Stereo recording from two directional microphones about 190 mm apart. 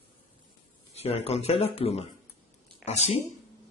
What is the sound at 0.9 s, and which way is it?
Speech, 35° left (ahead or behind).